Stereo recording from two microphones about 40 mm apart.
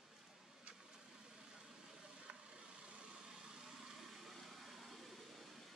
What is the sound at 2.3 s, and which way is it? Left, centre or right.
Vehicle, right.